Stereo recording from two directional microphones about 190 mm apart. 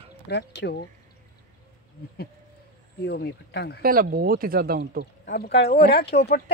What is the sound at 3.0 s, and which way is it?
Speech, 60° left (ahead or behind).